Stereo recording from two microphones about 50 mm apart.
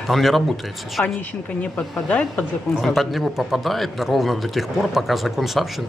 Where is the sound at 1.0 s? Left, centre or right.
Left.